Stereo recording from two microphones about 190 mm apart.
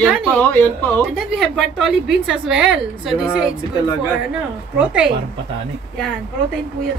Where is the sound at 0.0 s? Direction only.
5° left (ahead or behind).